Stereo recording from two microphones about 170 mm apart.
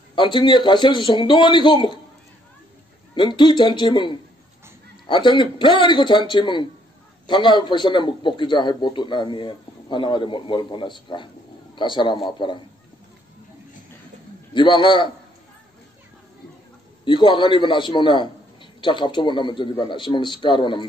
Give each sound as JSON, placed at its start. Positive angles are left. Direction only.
{"t": 0.1, "sound": "a man's voice", "side_deg": 30}
{"t": 3.2, "sound": "a man's voice", "side_deg": 30}
{"t": 14.5, "sound": "a man's voice", "side_deg": 30}
{"t": 17.0, "sound": "a man's voice", "side_deg": 25}